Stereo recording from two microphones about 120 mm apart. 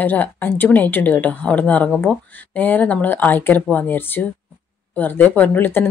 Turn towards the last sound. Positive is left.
turn(degrees=15)  # may be behind; listen again after turning